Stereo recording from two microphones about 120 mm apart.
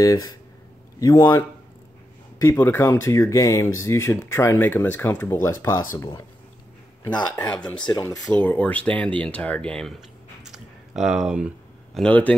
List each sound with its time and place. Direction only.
0.0 s speech: 30° left (ahead or behind)
2.4 s speech: 25° left (ahead or behind)
7.4 s speech: 15° left (ahead or behind)
9.9 s a sound: 5° right (ahead or behind)
11.9 s speech: 10° left (ahead or behind)